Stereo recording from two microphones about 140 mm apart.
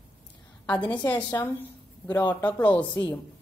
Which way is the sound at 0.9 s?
35° left (ahead or behind).